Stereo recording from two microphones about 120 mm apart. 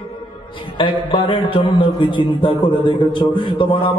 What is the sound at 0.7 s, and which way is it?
A man's voice, 45° left (ahead or behind).